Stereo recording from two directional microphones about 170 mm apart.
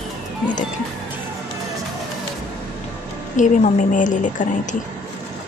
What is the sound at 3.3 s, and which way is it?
Speech, 45° left (ahead or behind).